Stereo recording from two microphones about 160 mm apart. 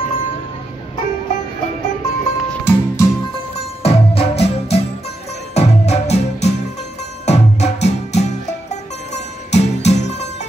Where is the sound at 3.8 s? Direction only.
40° left (ahead or behind).